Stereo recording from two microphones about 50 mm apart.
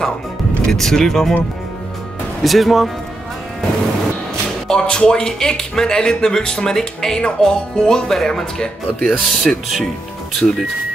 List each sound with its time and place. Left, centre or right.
0.7 s speech: centre
2.4 s speech: centre
4.6 s speech: centre
10.4 s speech: left